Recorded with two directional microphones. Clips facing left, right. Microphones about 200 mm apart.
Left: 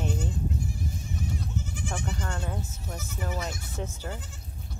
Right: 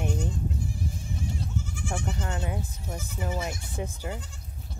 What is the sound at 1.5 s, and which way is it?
Goat, 20° left (ahead or behind).